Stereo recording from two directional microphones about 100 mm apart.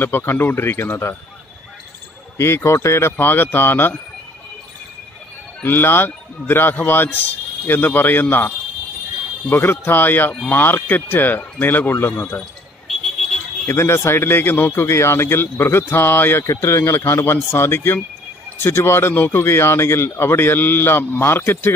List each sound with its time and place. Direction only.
0.0 s speech: 20° left (ahead or behind)
2.3 s speech: 25° left (ahead or behind)
5.6 s speech: 20° left (ahead or behind)
12.8 s alarm: centre (ahead or behind)
13.7 s speech: 25° left (ahead or behind)